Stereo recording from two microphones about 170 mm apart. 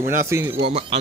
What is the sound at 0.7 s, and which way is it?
Speech, 35° right (ahead or behind).